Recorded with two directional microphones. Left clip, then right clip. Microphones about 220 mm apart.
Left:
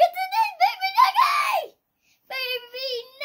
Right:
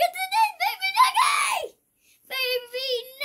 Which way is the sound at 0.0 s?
10° left (ahead or behind).